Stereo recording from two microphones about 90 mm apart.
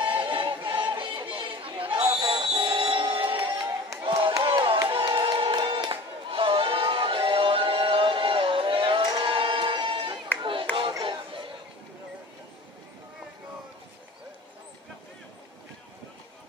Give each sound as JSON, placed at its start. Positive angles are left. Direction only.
{"t": 0.0, "sound": "music", "side_deg": -65}
{"t": 2.2, "sound": "music", "side_deg": -50}
{"t": 3.3, "sound": "music", "side_deg": -40}
{"t": 4.4, "sound": "crowd", "side_deg": -75}
{"t": 4.8, "sound": "a sound", "side_deg": -65}
{"t": 9.2, "sound": "music", "side_deg": -75}
{"t": 10.4, "sound": "clapping", "side_deg": -70}